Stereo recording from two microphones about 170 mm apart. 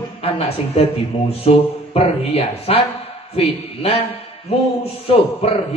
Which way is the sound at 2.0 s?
35° left (ahead or behind).